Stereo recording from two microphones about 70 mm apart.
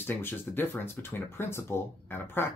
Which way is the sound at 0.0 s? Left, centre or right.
Left.